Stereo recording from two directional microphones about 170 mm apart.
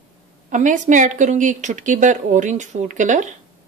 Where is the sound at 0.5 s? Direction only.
50° right (ahead or behind).